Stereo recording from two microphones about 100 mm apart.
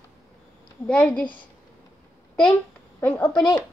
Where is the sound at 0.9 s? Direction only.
10° left (ahead or behind).